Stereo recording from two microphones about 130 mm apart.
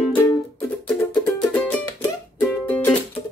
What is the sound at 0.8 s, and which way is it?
Music, 10° left (ahead or behind).